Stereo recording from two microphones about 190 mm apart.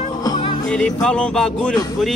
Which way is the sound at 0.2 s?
25° left (ahead or behind).